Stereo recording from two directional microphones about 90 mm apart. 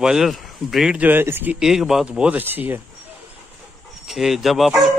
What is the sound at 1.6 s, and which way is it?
Speech, 5° right (ahead or behind).